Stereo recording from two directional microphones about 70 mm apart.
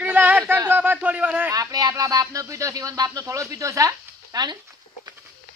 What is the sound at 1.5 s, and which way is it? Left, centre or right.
Speech, right.